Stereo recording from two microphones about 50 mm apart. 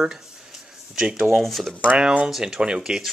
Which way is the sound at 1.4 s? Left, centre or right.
Centre.